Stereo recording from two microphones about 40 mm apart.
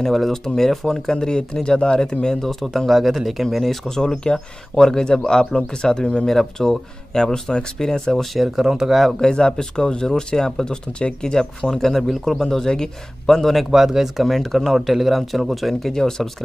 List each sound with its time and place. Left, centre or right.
0.0 s speech: centre
1.1 s speech: left
2.9 s speech: centre
3.9 s speech: centre
6.2 s speech: centre
8.4 s speech: centre
9.2 s speech: left
13.7 s speech: centre
14.2 s speech: centre
15.9 s speech: centre